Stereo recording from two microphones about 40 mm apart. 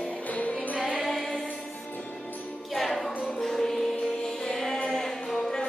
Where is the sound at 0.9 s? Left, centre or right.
Centre.